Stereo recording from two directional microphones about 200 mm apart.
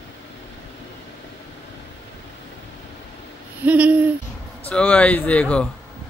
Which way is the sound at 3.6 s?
5° right (ahead or behind).